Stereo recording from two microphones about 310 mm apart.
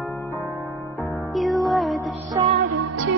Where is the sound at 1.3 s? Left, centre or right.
Centre.